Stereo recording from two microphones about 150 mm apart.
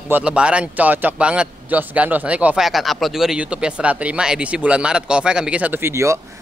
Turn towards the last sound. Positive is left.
turn(degrees=-15)  # may be behind; listen again after turning